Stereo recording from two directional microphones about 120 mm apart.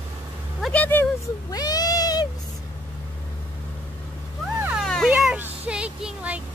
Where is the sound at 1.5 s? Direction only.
35° left (ahead or behind).